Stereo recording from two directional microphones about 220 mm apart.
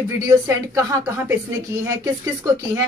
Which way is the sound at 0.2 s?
15° right (ahead or behind).